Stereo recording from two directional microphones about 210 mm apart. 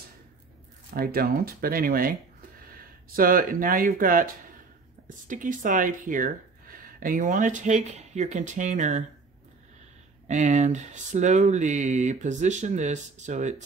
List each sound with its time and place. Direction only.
0.9 s speech: 45° right (ahead or behind)
3.2 s speech: 40° right (ahead or behind)
5.3 s speech: 40° right (ahead or behind)
10.2 s speech: 35° right (ahead or behind)